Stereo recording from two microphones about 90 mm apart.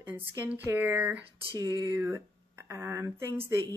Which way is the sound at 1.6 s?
45° right (ahead or behind).